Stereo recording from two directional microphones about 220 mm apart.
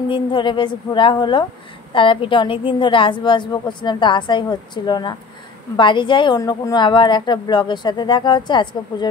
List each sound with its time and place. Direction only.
0.1 s a woman's voice: 20° left (ahead or behind)